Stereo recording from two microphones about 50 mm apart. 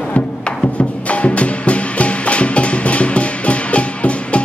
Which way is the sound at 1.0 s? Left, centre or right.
Left.